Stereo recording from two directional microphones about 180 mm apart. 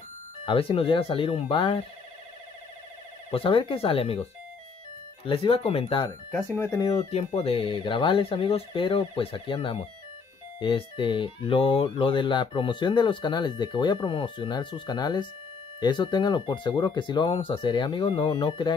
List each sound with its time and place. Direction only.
0.5 s speech: 30° left (ahead or behind)
3.3 s speech: 30° left (ahead or behind)
6.0 s speech: 15° left (ahead or behind)
6.9 s speech: 35° left (ahead or behind)